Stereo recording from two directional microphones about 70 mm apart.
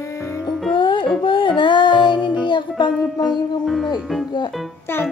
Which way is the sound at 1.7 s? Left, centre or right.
Left.